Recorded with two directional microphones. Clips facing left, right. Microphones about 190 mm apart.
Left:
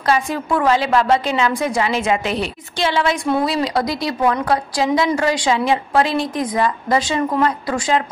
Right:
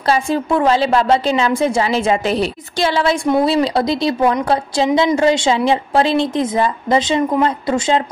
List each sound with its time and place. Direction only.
0.0 s a woman's voice: 30° right (ahead or behind)